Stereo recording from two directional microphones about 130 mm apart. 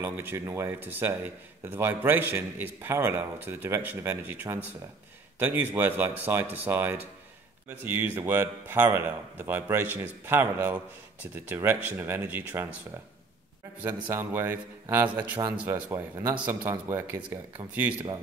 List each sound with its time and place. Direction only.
0.0 s a man's voice: 15° right (ahead or behind)
13.8 s a man's voice: 15° right (ahead or behind)